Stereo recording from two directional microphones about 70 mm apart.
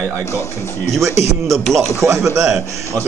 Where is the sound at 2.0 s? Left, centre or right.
Right.